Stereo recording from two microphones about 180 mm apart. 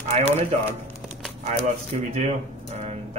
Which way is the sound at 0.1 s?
35° right (ahead or behind).